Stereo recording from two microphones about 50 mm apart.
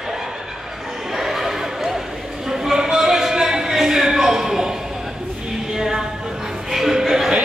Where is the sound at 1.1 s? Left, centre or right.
Centre.